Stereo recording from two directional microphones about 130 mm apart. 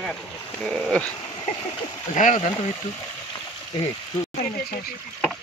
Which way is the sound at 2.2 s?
70° left (ahead or behind).